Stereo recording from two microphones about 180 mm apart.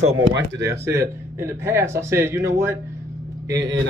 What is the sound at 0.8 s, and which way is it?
A man's voice, 15° right (ahead or behind).